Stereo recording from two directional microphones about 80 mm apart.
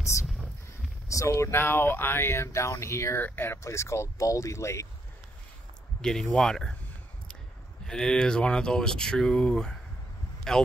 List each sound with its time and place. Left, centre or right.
1.0 s speech: left
5.9 s speech: centre
7.8 s speech: centre